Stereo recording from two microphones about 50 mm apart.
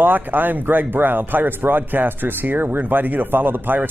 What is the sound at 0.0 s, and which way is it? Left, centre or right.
Speech, right.